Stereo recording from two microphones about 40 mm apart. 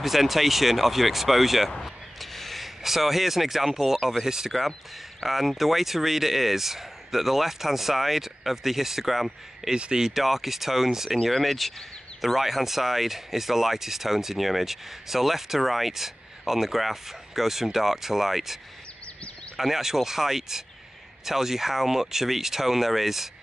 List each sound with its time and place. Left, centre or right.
0.0 s speech: centre
5.2 s speech: centre
9.8 s speech: right
10.0 s speech: centre
11.2 s speech: centre